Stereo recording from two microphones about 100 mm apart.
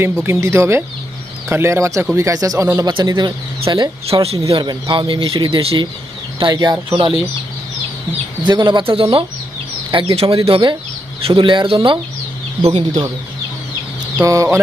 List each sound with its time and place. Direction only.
0.0 s speech: 25° right (ahead or behind)
2.9 s speech: 45° right (ahead or behind)
4.1 s speech: 85° right
4.6 s speech: 55° right (ahead or behind)
6.5 s speech: 40° right (ahead or behind)
8.5 s speech: 50° right (ahead or behind); by 9.2 s 65° right (ahead or behind)
9.8 s speech: 55° right (ahead or behind)
10.1 s speech: 70° right (ahead or behind)
12.7 s speech: 45° right (ahead or behind)
14.2 s speech: 30° right (ahead or behind)